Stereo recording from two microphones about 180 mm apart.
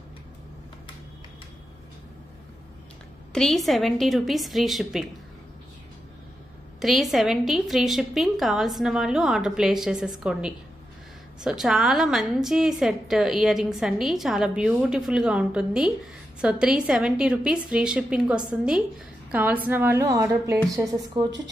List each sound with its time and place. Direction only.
3.3 s a woman's voice: centre (ahead or behind)
6.8 s a woman's voice: centre (ahead or behind); by 21.3 s 20° right (ahead or behind)